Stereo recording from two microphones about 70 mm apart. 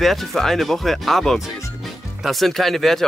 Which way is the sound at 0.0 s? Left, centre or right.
Centre.